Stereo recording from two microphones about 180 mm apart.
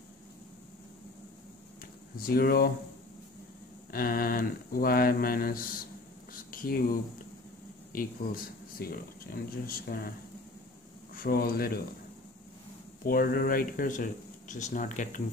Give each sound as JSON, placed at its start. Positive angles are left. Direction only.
{"t": 2.1, "sound": "speech", "side_deg": 55}
{"t": 3.9, "sound": "speech", "side_deg": 55}
{"t": 11.1, "sound": "speech", "side_deg": 55}
{"t": 13.0, "sound": "speech", "side_deg": 55}